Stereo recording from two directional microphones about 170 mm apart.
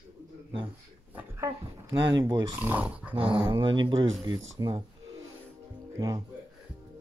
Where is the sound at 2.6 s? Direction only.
10° right (ahead or behind).